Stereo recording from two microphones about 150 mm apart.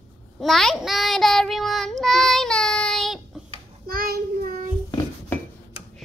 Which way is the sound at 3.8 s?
80° right.